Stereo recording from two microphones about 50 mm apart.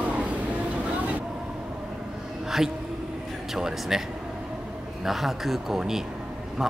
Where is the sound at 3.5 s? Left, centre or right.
Centre.